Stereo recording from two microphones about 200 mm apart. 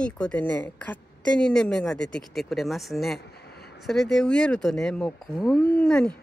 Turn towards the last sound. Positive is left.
turn(degrees=5)  # may be behind; listen again after turning